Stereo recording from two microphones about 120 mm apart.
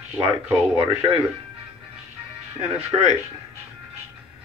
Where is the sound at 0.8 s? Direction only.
50° right (ahead or behind).